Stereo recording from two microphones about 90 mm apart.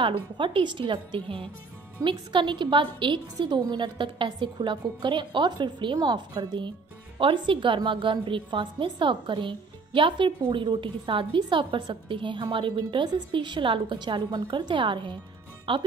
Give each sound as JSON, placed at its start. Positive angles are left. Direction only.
{"t": 0.0, "sound": "speech", "side_deg": -75}
{"t": 2.0, "sound": "a woman's voice", "side_deg": -65}
{"t": 5.9, "sound": "a woman's voice", "side_deg": -50}